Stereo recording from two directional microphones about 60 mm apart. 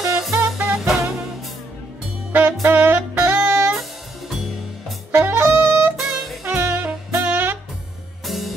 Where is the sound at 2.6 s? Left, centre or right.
Right.